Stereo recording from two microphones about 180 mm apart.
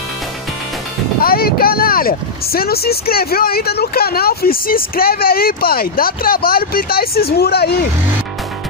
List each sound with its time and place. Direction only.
1.2 s speech: 55° left (ahead or behind)